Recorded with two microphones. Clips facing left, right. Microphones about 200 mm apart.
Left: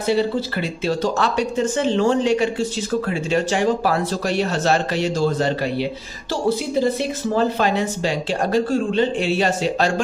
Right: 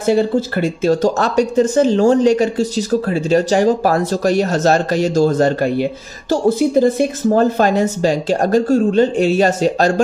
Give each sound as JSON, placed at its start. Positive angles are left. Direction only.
{"t": 0.0, "sound": "speech", "side_deg": -45}